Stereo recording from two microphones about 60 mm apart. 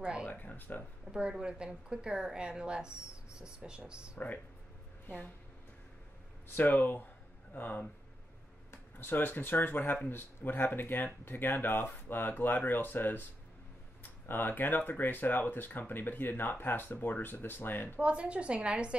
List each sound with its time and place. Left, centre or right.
0.0 s speech: centre
0.3 s speech: left
1.1 s speech: centre
6.5 s speech: left
8.9 s speech: left
14.2 s speech: left
18.0 s a woman's voice: centre